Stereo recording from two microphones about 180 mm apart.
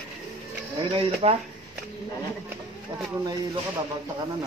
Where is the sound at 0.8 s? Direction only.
30° right (ahead or behind).